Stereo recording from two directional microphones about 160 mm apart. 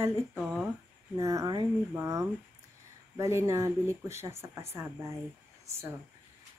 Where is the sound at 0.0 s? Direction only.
15° right (ahead or behind).